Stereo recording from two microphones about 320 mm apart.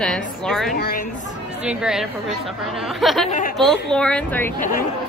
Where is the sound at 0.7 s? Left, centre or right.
Left.